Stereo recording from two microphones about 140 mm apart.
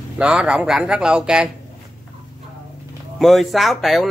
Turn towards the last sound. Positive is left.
turn(degrees=0)  # may be behind; listen again after turning